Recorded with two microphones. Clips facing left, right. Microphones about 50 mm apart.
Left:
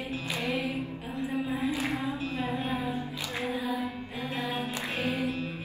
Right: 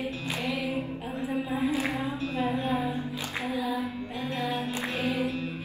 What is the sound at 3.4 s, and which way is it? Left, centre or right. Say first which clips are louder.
Music: right 2 dB; left.